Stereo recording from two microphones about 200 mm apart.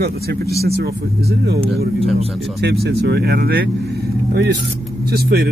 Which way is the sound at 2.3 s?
Centre (ahead or behind).